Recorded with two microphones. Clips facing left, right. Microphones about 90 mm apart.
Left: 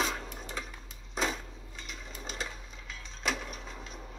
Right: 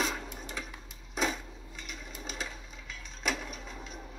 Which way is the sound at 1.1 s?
5° right (ahead or behind).